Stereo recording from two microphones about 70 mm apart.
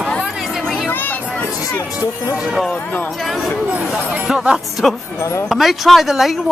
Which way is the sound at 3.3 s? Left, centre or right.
Centre.